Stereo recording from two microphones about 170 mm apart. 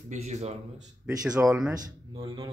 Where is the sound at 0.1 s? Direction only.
40° right (ahead or behind).